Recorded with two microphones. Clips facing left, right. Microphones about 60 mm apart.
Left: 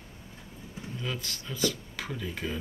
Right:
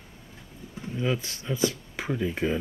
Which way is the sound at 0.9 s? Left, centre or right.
Right.